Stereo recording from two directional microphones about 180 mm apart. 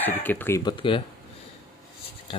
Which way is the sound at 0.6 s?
30° left (ahead or behind).